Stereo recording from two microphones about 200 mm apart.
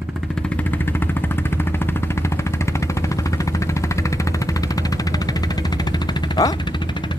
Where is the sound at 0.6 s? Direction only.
10° left (ahead or behind).